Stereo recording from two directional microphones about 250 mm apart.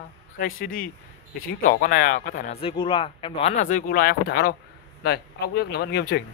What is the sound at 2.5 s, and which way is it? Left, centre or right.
Speech, centre.